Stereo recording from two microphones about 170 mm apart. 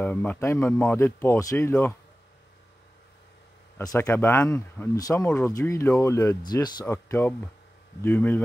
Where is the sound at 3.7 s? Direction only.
15° left (ahead or behind).